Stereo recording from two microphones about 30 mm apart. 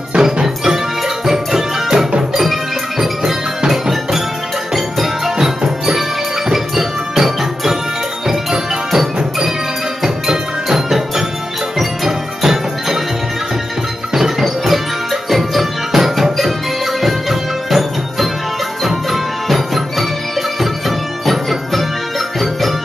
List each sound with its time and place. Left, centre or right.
0.2 s music: centre
3.7 s music: centre
6.5 s music: centre
10.0 s music: centre
11.8 s music: centre
15.2 s music: centre
19.5 s music: centre
21.3 s music: centre